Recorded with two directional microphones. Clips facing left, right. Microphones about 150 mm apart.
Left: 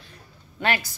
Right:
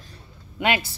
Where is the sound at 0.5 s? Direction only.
20° right (ahead or behind).